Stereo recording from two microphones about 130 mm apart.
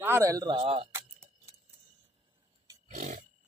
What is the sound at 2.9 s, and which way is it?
Roaring cats, 90° right.